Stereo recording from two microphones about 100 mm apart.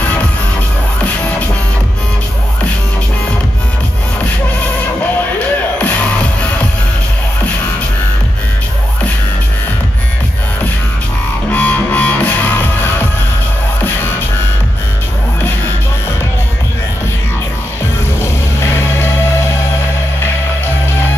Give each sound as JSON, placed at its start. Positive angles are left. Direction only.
{"t": 11.5, "sound": "music", "side_deg": 15}
{"t": 18.2, "sound": "music", "side_deg": 25}